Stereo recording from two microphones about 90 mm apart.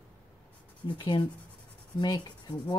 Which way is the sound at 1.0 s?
60° left (ahead or behind).